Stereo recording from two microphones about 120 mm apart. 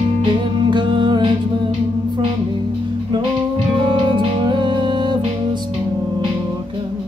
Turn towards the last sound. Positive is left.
turn(degrees=-40)  # may be behind; listen again after turning